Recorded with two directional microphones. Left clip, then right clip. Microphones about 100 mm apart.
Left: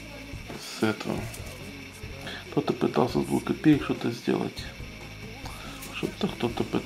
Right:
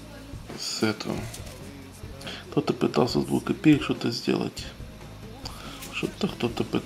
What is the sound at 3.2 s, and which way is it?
Speech, 30° right (ahead or behind).